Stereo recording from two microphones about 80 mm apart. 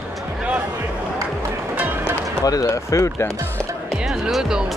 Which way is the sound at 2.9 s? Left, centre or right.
Left.